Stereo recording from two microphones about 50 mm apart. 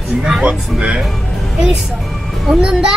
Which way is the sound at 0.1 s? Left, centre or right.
Centre.